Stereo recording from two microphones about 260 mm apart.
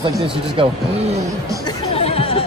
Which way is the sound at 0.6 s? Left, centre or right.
Centre.